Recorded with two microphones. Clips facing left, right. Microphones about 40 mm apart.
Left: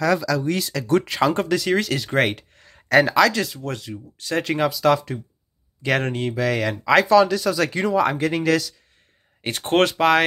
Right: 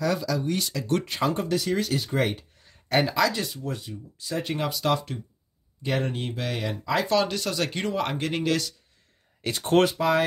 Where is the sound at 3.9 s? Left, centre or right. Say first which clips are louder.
Left 6 dB; left.